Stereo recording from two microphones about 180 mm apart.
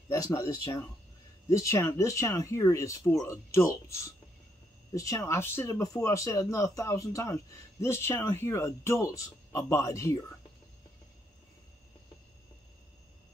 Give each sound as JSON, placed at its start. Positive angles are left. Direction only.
{"t": 0.1, "sound": "speech", "side_deg": 20}